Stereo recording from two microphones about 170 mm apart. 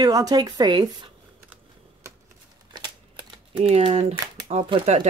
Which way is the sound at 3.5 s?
35° right (ahead or behind).